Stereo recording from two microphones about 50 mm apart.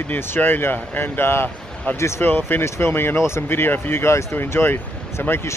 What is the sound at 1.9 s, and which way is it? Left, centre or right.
Speech, left.